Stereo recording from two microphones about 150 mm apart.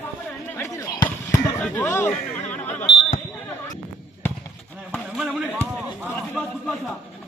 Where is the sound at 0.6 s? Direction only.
25° left (ahead or behind).